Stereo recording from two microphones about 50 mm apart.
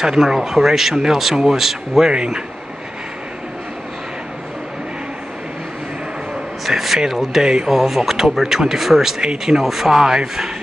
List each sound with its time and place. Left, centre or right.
0.0 s speech: centre
6.6 s speech: centre
7.7 s speech: centre